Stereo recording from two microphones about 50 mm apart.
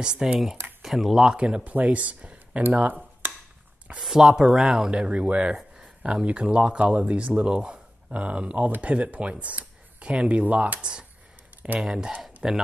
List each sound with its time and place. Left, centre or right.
0.0 s speech: centre
0.8 s speech: centre
1.4 s speech: right
4.0 s speech: centre
4.9 s speech: right
5.6 s a sound: centre
6.2 s speech: right